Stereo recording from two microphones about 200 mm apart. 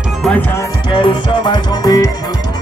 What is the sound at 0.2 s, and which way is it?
Music, 5° left (ahead or behind).